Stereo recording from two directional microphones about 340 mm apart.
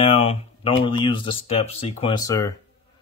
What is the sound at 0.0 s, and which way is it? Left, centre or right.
Speech, centre.